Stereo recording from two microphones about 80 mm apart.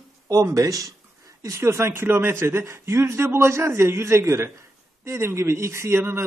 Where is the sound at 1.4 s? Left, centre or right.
Right.